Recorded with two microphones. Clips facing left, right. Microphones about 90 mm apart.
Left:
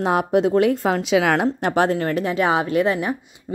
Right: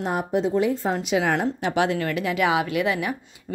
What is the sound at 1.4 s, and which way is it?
Speech, 45° left (ahead or behind).